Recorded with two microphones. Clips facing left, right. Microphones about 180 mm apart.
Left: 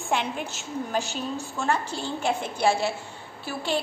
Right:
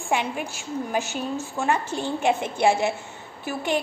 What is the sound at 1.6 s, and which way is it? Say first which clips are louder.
A woman's voice: right 2 dB; 15° right (ahead or behind).